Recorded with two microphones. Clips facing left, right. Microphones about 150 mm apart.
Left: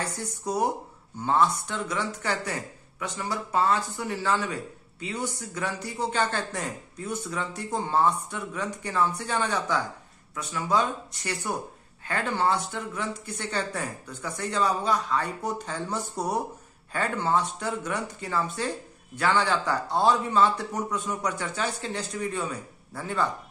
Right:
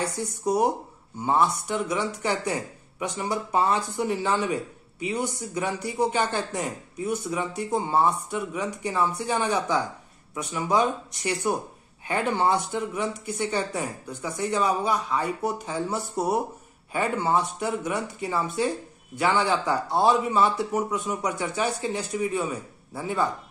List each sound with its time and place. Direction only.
1.2 s speech: 15° right (ahead or behind)